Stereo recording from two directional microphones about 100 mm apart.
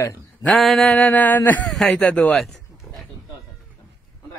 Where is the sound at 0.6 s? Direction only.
5° left (ahead or behind).